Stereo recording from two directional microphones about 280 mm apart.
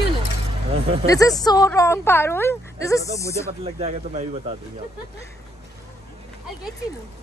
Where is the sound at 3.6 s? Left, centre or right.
Right.